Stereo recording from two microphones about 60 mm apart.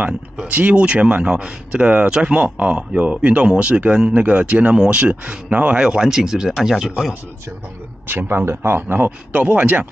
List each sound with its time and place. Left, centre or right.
0.5 s speech: right; by 7.2 s centre
8.1 s speech: right